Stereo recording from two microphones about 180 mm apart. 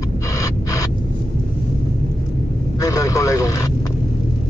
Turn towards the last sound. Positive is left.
turn(degrees=20)  # may be behind; listen again after turning